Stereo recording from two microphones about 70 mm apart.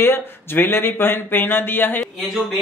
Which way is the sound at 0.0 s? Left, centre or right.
Left.